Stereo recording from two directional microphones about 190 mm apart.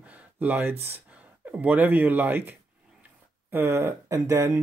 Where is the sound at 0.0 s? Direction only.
5° right (ahead or behind).